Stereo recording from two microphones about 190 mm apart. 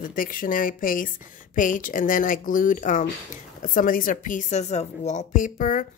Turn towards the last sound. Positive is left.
turn(degrees=45)  # may be behind; listen again after turning